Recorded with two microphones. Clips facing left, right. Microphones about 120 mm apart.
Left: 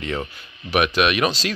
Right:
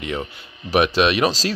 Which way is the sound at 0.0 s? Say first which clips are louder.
Even; 15° right (ahead or behind).